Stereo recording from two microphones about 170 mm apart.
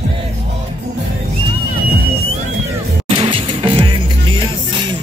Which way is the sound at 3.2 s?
30° right (ahead or behind).